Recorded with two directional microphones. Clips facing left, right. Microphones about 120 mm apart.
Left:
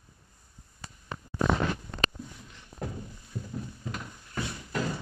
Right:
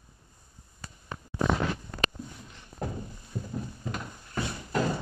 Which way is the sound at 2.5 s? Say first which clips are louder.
Right 2 dB; 40° right (ahead or behind).